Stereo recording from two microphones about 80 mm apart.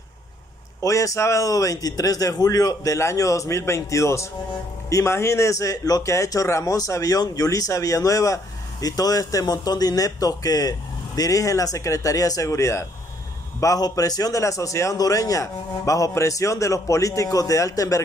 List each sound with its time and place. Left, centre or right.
0.8 s a man's voice: left
13.6 s a man's voice: left